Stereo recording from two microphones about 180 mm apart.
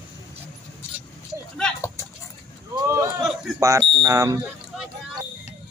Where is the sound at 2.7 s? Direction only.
15° right (ahead or behind).